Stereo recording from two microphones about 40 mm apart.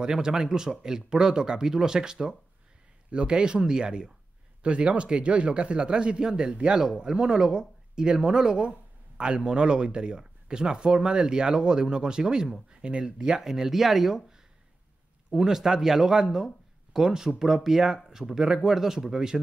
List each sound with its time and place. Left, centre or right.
0.0 s speech: centre